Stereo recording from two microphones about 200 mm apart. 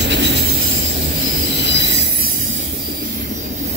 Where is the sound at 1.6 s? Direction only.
60° right (ahead or behind).